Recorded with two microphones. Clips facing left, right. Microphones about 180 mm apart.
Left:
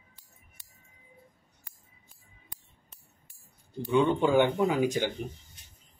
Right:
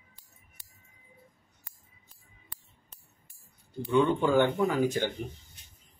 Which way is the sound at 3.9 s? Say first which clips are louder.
Even; 20° left (ahead or behind).